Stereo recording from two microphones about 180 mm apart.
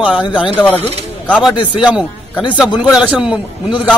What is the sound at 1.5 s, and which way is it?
Speech, 25° left (ahead or behind).